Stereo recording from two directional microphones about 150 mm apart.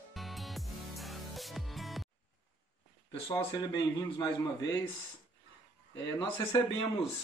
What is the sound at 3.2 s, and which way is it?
A man's voice, 25° left (ahead or behind).